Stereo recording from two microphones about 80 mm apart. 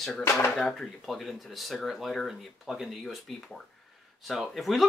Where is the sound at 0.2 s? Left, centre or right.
Left.